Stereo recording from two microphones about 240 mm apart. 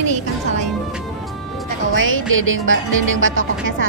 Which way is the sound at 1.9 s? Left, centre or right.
Right.